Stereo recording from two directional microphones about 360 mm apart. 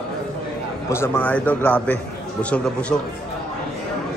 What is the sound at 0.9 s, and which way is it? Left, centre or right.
A man's voice, centre.